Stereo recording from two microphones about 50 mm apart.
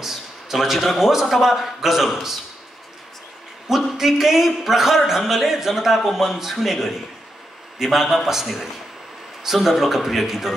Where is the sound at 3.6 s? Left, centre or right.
Centre.